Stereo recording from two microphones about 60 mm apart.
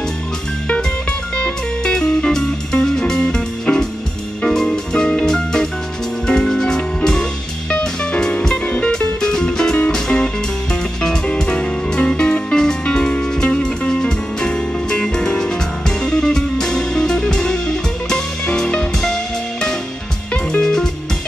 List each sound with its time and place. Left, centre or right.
1.3 s music: centre
20.6 s music: centre